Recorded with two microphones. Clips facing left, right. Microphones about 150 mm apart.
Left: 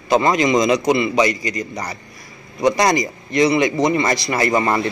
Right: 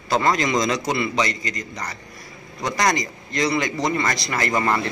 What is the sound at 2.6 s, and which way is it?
A man's voice, 25° left (ahead or behind).